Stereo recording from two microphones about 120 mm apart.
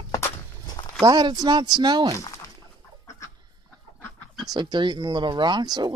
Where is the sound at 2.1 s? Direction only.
25° left (ahead or behind).